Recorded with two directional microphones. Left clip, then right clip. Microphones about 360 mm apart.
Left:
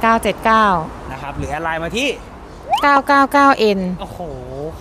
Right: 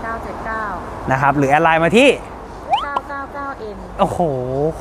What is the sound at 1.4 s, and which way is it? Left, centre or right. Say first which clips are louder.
Speech: right 5 dB; right.